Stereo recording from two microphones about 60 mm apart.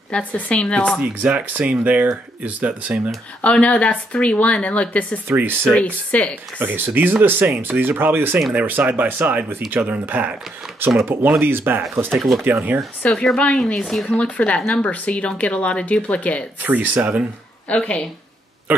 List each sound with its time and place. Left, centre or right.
0.1 s speech: left
0.9 s speech: centre
3.4 s speech: centre
5.3 s speech: right
5.8 s speech: centre
6.6 s speech: right
13.1 s speech: centre
16.6 s speech: right
17.6 s speech: centre
18.7 s speech: right